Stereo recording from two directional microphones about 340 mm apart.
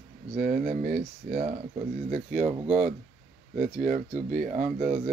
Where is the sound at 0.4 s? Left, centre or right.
Right.